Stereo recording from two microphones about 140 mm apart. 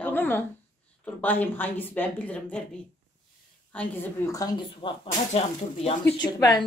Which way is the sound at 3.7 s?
10° left (ahead or behind).